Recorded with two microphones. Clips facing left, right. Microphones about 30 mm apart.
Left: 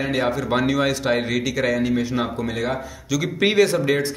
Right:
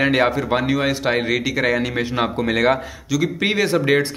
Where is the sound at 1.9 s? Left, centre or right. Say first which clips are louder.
Right 1 dB; right.